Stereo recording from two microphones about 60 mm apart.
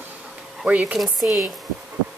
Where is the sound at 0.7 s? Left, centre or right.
Centre.